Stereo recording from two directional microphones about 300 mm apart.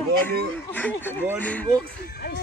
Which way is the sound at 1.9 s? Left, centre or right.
Left.